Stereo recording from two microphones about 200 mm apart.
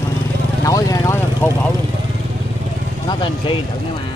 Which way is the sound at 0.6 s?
15° left (ahead or behind).